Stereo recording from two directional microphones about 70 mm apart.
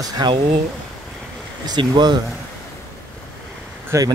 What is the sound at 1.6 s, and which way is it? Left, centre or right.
Speech, right.